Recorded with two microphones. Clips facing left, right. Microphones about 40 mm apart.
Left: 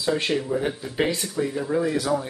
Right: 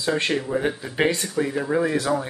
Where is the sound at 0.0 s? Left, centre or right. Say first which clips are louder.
Right 1 dB; centre.